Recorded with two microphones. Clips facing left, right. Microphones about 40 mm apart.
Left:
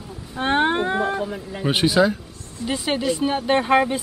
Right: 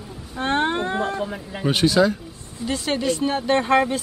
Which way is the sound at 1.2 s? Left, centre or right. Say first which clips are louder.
Even; centre.